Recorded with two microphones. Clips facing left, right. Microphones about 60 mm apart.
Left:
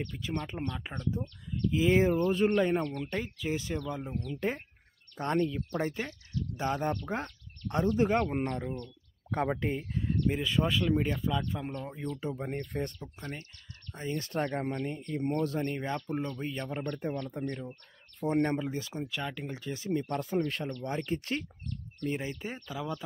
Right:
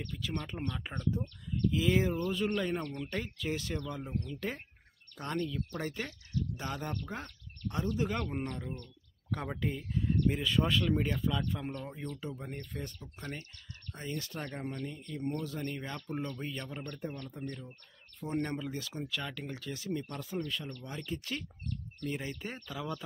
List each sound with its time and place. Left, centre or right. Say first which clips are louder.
0.4 s speech: left 2 dB; centre
1.7 s speech: left 5 dB; left
3.1 s speech: left 3 dB; centre; by 7.0 s left
7.1 s speech: left 7 dB; left
10.2 s speech: left 2 dB; centre
12.2 s speech: left 6 dB; left
13.9 s speech: left 4 dB; left
14.2 s speech: left 8 dB; left
15.6 s speech: left 6 dB; left
17.0 s speech: left 6 dB; left
18.6 s speech: left 4 dB; left
20.2 s speech: left 6 dB; left
22.0 s speech: left 4 dB; centre